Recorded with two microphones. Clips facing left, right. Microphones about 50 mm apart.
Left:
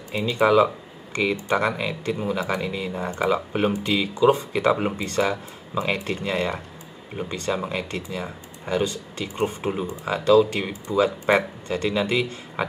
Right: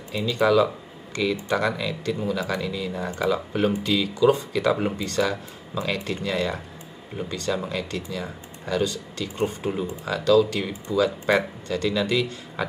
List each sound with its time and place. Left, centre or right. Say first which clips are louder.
0.1 s speech: left 2 dB; left